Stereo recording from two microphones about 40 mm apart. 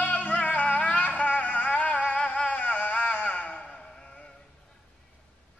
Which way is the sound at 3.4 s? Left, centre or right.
Left.